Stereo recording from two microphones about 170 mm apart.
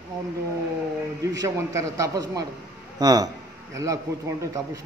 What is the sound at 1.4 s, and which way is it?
A man's voice, 20° right (ahead or behind).